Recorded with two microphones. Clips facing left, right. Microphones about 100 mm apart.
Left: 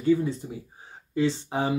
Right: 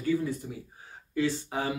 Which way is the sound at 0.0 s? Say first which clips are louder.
Left 5 dB; 25° left (ahead or behind).